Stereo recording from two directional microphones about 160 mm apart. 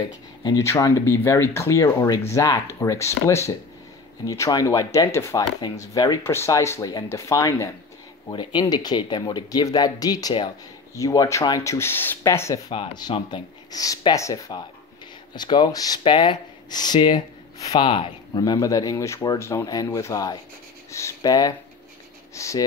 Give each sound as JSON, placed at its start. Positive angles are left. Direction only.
{"t": 0.4, "sound": "speech", "side_deg": 20}
{"t": 12.7, "sound": "speech", "side_deg": 30}
{"t": 18.4, "sound": "speech", "side_deg": 20}